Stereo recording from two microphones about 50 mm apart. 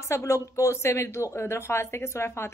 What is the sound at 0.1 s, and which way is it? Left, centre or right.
Speech, left.